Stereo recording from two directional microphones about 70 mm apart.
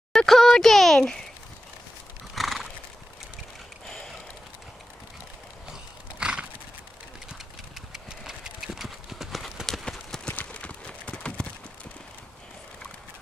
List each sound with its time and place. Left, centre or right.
0.1 s speech: centre
2.3 s horse: centre
3.8 s a sound: centre
6.1 s horse: centre
7.9 s clip-clop: centre
10.3 s a sound: left